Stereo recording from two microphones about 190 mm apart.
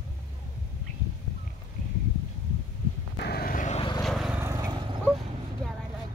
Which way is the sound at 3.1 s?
55° left (ahead or behind).